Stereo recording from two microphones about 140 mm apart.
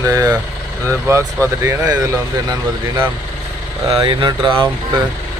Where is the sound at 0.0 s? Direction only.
25° right (ahead or behind).